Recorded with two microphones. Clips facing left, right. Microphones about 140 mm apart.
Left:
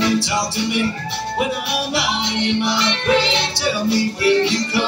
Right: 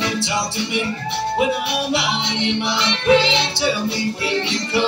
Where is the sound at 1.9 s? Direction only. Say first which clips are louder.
Left 1 dB; 20° right (ahead or behind).